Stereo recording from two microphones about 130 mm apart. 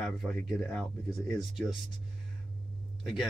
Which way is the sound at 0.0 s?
5° left (ahead or behind).